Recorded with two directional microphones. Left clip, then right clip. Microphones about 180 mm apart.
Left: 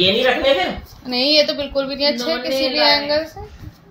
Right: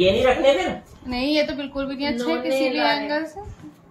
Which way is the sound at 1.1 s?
50° left (ahead or behind).